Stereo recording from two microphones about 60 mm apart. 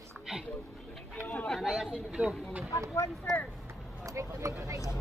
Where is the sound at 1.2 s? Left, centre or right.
Left.